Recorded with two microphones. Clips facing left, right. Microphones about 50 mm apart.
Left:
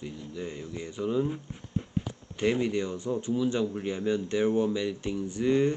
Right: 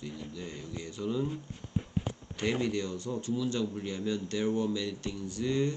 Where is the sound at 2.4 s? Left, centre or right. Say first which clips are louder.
Left 4 dB; centre.